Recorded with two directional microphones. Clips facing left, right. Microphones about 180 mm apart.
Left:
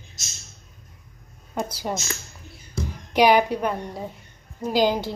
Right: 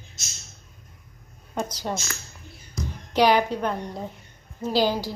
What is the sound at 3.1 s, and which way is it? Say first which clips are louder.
Speech: left 2 dB; 15° left (ahead or behind).